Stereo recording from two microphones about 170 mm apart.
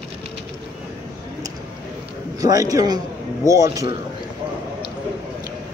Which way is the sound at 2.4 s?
20° right (ahead or behind).